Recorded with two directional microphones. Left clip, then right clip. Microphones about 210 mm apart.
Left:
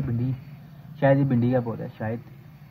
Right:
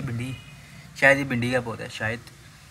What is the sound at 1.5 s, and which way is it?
Speech, 30° right (ahead or behind).